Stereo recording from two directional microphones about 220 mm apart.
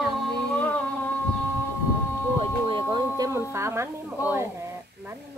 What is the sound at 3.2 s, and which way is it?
A woman's voice, 15° right (ahead or behind).